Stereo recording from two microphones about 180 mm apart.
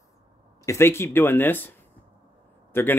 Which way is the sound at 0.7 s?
15° left (ahead or behind).